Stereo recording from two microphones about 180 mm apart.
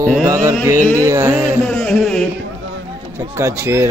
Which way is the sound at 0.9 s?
15° right (ahead or behind).